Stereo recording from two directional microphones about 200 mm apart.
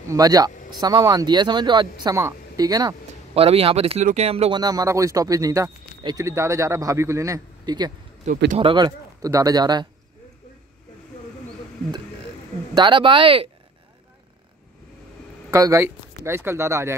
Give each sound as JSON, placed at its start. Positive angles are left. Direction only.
{"t": 0.1, "sound": "speech", "side_deg": -20}
{"t": 12.7, "sound": "speech", "side_deg": -25}
{"t": 15.5, "sound": "speech", "side_deg": -15}